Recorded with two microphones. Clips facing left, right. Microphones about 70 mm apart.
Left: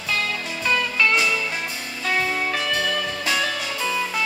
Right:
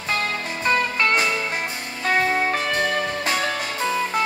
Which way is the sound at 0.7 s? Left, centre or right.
Right.